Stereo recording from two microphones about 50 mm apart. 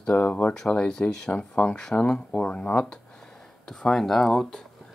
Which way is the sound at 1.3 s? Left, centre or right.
Left.